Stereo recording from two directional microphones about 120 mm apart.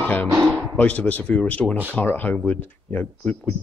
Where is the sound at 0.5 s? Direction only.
10° left (ahead or behind).